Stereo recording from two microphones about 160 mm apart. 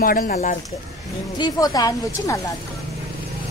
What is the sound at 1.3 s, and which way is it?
A woman's voice, 25° left (ahead or behind).